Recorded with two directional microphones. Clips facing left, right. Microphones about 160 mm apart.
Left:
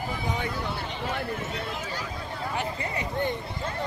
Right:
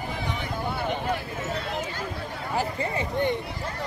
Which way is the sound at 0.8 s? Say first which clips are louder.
Right 5 dB; 55° right (ahead or behind).